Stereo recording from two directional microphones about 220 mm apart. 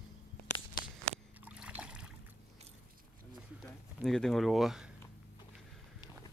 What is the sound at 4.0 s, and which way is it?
Speech, centre (ahead or behind).